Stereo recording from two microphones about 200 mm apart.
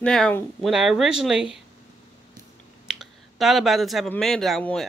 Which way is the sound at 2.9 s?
Centre (ahead or behind).